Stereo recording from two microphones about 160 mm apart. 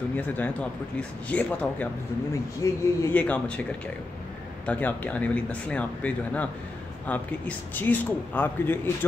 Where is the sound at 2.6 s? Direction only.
20° left (ahead or behind).